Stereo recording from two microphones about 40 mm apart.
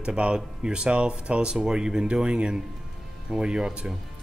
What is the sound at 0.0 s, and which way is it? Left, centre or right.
Speech, right.